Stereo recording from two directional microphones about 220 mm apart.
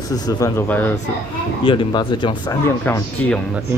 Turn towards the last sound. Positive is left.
turn(degrees=5)  # may be behind; listen again after turning